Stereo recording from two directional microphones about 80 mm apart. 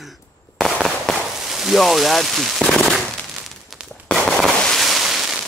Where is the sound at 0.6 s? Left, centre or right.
Centre.